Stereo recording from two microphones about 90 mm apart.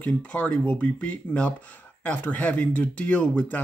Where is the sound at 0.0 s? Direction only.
15° left (ahead or behind).